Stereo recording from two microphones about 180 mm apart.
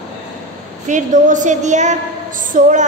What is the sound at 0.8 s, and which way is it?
A woman's voice, 45° right (ahead or behind).